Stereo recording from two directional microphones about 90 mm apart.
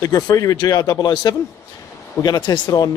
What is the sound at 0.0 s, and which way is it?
Speech, 40° left (ahead or behind).